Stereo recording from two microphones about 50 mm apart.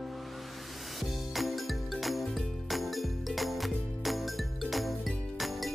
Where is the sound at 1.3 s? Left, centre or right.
Centre.